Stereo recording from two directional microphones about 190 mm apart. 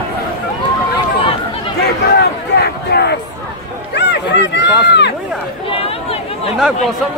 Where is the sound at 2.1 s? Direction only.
60° left (ahead or behind).